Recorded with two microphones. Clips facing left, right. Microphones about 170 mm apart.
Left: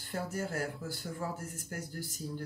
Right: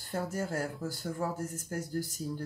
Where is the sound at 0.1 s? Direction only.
45° right (ahead or behind).